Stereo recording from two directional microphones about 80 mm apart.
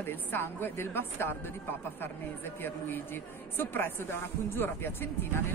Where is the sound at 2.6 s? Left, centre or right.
Left.